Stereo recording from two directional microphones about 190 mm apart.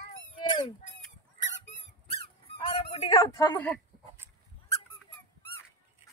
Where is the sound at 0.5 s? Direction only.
25° left (ahead or behind).